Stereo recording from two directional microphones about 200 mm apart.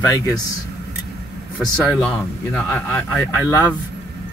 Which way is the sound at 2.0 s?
5° left (ahead or behind).